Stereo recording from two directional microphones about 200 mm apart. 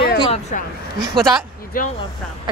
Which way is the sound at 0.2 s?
30° left (ahead or behind).